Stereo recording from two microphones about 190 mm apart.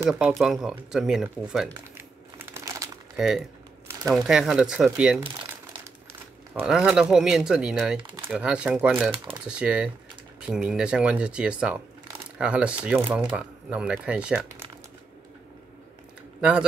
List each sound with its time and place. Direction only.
0.0 s speech: 10° right (ahead or behind)
3.2 s speech: 5° right (ahead or behind)
6.6 s speech: 5° right (ahead or behind)
8.0 s typing: 25° right (ahead or behind)
8.3 s speech: 5° right (ahead or behind)
16.3 s speech: 5° right (ahead or behind)